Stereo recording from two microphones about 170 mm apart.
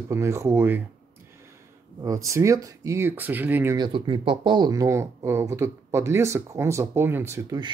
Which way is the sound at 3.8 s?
30° right (ahead or behind).